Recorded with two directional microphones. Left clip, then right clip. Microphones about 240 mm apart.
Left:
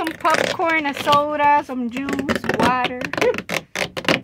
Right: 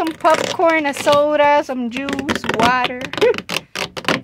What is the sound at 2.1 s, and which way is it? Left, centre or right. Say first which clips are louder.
Speech: right 1 dB; right.